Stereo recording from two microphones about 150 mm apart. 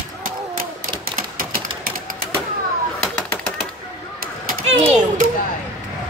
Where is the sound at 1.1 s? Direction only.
70° right (ahead or behind).